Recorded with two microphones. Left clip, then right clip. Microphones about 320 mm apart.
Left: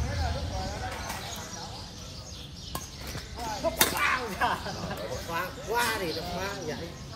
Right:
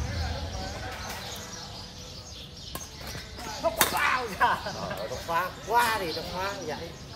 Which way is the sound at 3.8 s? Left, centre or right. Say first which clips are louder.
Right 1 dB; centre.